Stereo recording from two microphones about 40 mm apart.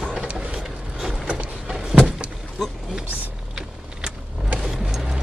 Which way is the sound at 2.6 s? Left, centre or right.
Centre.